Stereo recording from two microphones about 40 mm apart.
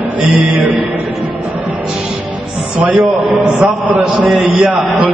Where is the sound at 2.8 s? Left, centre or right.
Right.